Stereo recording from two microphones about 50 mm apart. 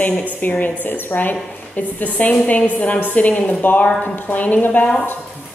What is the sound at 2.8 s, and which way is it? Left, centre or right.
A woman's voice, left.